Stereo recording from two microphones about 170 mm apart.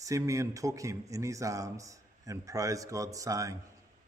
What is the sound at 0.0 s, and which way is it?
A man's voice, 20° right (ahead or behind).